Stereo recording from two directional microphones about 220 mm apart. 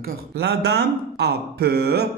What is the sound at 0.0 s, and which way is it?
Speech, 45° right (ahead or behind).